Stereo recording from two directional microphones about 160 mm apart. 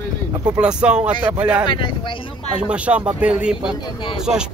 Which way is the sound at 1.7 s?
30° left (ahead or behind).